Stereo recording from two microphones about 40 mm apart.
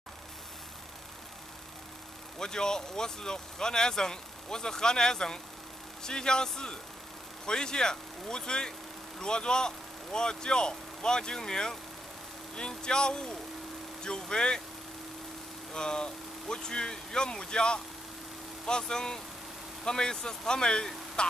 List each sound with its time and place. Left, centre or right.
2.3 s speech: centre
15.7 s speech: centre